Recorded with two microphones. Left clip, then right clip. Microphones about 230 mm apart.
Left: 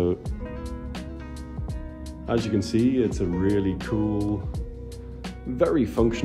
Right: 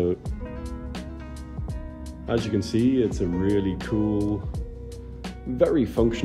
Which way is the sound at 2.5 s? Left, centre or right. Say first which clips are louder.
Even; left.